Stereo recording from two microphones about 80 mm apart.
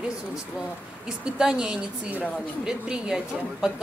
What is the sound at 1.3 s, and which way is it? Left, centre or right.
Speech, centre.